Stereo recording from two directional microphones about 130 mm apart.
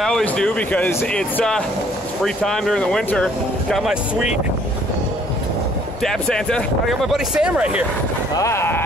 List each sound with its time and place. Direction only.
0.0 s speech: 5° left (ahead or behind)
3.7 s speech: 5° right (ahead or behind)
6.0 s speech: 5° left (ahead or behind)
8.4 s speech: 20° left (ahead or behind)